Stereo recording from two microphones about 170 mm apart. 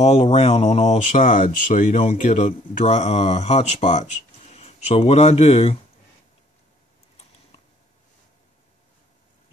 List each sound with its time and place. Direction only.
0.0 s speech: 35° left (ahead or behind)